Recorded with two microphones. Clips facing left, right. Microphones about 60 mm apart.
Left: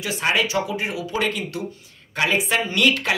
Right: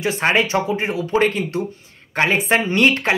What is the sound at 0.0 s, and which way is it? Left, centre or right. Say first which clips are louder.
Speech: right 4 dB; right.